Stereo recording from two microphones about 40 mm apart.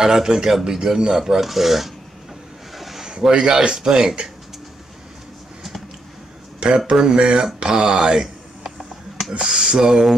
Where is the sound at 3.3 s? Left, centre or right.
Right.